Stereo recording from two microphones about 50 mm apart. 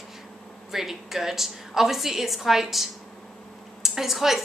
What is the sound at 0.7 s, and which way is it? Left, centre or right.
A woman's voice, centre.